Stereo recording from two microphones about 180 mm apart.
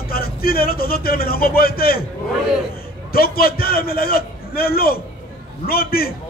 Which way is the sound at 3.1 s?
55° left (ahead or behind).